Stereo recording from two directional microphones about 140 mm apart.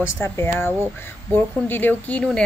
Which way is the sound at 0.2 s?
20° left (ahead or behind).